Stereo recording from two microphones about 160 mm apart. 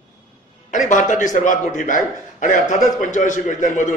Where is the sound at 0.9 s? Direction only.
50° left (ahead or behind).